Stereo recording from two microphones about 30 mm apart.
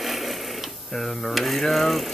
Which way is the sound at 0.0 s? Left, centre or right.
Centre.